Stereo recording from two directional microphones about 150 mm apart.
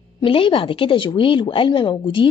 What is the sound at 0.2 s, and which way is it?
A woman's voice, 35° left (ahead or behind).